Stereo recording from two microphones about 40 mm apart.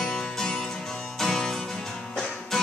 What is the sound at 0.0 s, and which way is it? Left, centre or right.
Music, centre.